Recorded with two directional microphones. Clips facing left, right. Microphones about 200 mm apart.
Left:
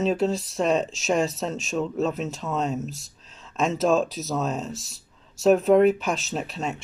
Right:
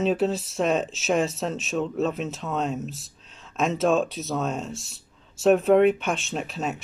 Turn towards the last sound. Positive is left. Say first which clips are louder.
# even
turn(degrees=0)  # may be behind; listen again after turning